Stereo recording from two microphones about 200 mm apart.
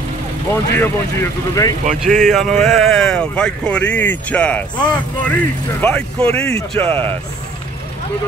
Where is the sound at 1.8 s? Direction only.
40° right (ahead or behind).